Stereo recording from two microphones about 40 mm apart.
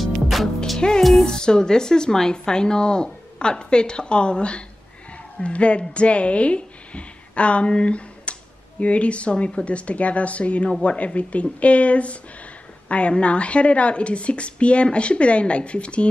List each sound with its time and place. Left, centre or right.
0.0 s music: centre
0.7 s music: centre
1.2 s speech: centre